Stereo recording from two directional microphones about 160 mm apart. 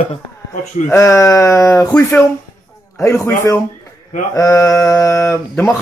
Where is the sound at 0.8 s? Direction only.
20° left (ahead or behind).